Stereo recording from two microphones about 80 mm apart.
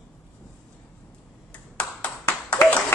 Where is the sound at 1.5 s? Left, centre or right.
Centre.